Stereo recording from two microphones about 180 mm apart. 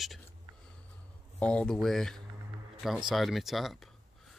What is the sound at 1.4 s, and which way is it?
Speech, 5° left (ahead or behind).